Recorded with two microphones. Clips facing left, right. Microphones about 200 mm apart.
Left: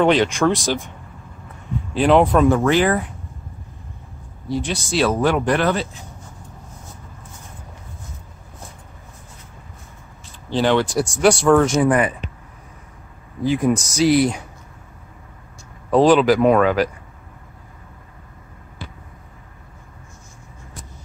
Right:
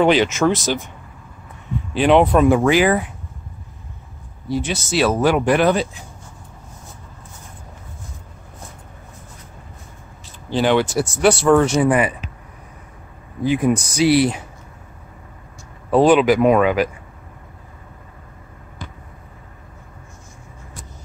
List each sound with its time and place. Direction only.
0.0 s speech: 5° right (ahead or behind)
2.0 s speech: centre (ahead or behind)
4.5 s speech: 5° right (ahead or behind)
10.5 s speech: 5° right (ahead or behind)
13.6 s speech: 10° right (ahead or behind)
16.1 s speech: 10° right (ahead or behind)